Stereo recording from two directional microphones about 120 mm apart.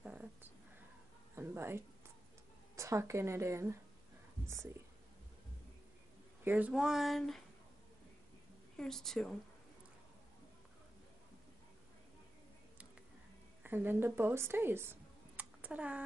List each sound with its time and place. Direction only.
0.0 s purr: 15° right (ahead or behind)
1.3 s a sound: 20° right (ahead or behind)
2.7 s a woman's voice: 25° right (ahead or behind)
6.4 s speech: 15° right (ahead or behind); by 7.4 s centre (ahead or behind)
8.7 s speech: 5° left (ahead or behind)
13.6 s speech: 15° right (ahead or behind)